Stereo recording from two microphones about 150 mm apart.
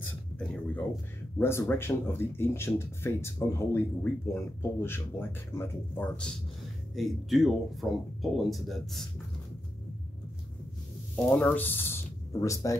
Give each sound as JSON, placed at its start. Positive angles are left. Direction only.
{"t": 0.4, "sound": "speech", "side_deg": 5}
{"t": 1.4, "sound": "speech", "side_deg": 15}
{"t": 11.2, "sound": "speech", "side_deg": 10}